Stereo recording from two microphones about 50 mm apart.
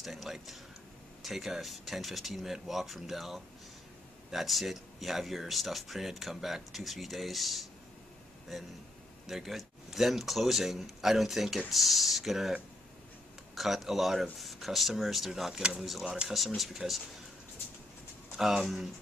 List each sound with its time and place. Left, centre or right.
0.0 s speech: centre
9.3 s speech: centre
13.6 s speech: centre
18.3 s speech: centre